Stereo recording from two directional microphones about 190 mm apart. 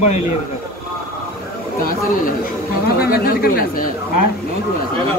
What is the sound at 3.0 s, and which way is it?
Speech, 50° left (ahead or behind).